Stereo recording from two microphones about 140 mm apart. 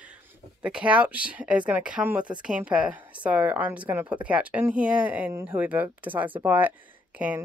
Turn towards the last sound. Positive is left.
turn(degrees=-10)  # may be behind; listen again after turning